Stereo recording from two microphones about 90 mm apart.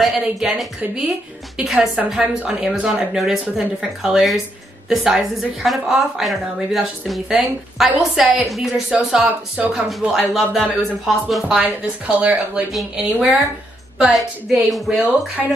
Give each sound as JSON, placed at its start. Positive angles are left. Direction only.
{"t": 0.0, "sound": "a woman's voice", "side_deg": -5}
{"t": 8.9, "sound": "speech", "side_deg": -15}
{"t": 9.8, "sound": "a woman's voice", "side_deg": 0}
{"t": 12.7, "sound": "a woman's voice", "side_deg": 0}